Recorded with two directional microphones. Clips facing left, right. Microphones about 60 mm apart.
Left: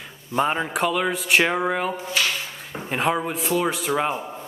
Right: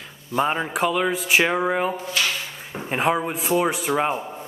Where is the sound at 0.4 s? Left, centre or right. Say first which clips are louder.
Even; centre.